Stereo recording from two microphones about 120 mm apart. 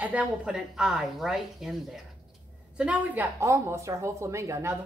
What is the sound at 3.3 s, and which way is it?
Speech, 20° right (ahead or behind).